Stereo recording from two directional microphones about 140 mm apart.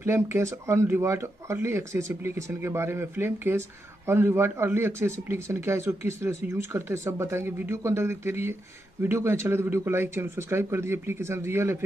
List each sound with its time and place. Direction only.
0.0 s speech: 20° right (ahead or behind)